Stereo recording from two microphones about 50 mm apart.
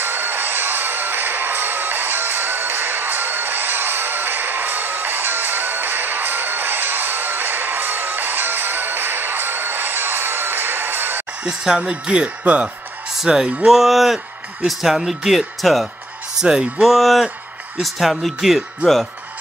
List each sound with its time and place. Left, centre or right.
0.0 s music: right
11.4 s speech: centre
13.1 s speech: centre
16.3 s speech: centre
16.8 s speech: centre